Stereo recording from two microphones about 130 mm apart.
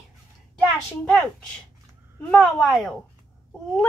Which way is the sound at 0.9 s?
10° left (ahead or behind).